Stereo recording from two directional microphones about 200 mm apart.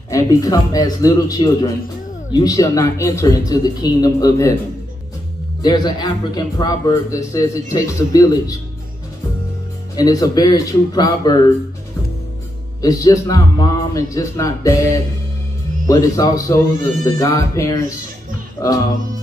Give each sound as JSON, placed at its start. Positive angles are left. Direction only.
{"t": 0.1, "sound": "a man's voice", "side_deg": 15}
{"t": 5.6, "sound": "a man's voice", "side_deg": 20}
{"t": 9.9, "sound": "a man's voice", "side_deg": 20}
{"t": 12.8, "sound": "a man's voice", "side_deg": 15}